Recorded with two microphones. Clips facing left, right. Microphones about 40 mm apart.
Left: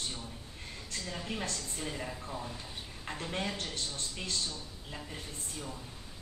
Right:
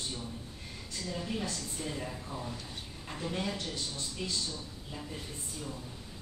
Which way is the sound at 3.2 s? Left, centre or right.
Left.